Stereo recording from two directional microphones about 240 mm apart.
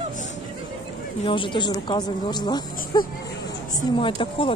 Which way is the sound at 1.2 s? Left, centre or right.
Left.